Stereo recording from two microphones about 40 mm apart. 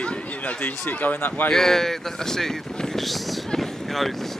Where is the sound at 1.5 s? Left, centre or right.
Centre.